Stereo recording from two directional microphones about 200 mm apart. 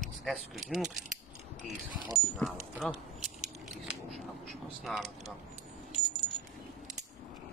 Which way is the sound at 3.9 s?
Centre (ahead or behind).